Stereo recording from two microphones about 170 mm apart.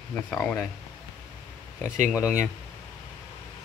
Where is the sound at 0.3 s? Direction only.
10° left (ahead or behind).